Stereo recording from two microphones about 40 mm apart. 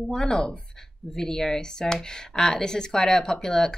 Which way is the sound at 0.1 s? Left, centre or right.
Centre.